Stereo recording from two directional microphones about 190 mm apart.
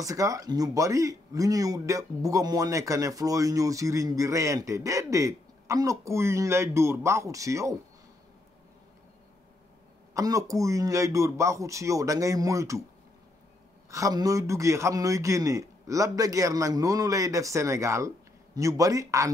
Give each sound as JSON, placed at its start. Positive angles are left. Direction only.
{"t": 0.0, "sound": "speech", "side_deg": -15}
{"t": 10.1, "sound": "speech", "side_deg": -15}
{"t": 13.8, "sound": "speech", "side_deg": -15}